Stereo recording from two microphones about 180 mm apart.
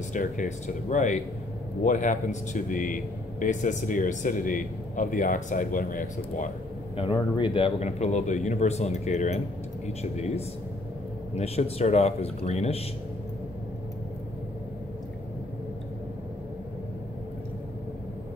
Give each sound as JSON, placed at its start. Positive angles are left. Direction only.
{"t": 0.1, "sound": "speech", "side_deg": 45}
{"t": 7.0, "sound": "speech", "side_deg": 25}